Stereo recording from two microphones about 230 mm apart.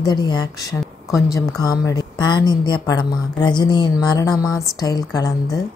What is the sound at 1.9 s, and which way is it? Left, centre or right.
A woman's voice, centre.